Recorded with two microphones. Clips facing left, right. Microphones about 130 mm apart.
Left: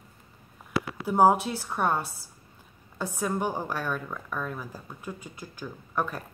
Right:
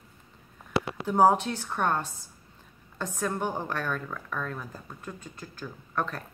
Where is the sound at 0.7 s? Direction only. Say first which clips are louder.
Right 1 dB; 25° right (ahead or behind).